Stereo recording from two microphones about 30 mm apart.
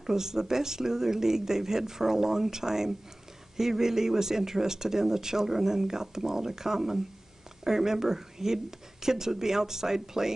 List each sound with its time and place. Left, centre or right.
0.0 s speech: centre